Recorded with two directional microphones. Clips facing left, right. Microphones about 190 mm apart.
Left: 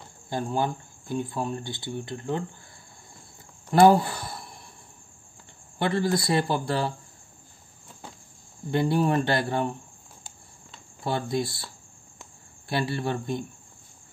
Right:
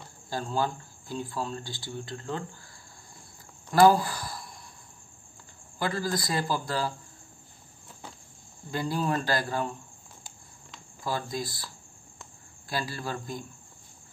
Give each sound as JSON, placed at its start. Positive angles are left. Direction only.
{"t": 0.3, "sound": "speech", "side_deg": 20}
{"t": 3.7, "sound": "speech", "side_deg": 25}
{"t": 5.8, "sound": "speech", "side_deg": 25}
{"t": 8.6, "sound": "speech", "side_deg": 25}